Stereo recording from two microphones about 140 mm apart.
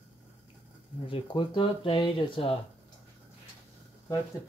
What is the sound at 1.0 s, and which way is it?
Speech, 40° left (ahead or behind).